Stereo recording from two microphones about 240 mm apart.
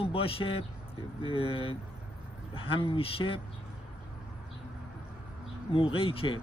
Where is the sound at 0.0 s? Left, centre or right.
Left.